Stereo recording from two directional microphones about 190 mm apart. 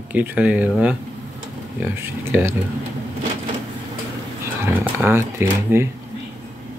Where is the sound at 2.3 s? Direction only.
10° right (ahead or behind).